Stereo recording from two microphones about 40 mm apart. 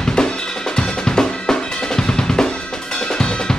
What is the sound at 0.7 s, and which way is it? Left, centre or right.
Drum, centre.